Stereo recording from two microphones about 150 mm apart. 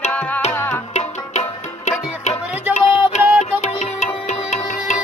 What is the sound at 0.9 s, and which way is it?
Music, 45° left (ahead or behind).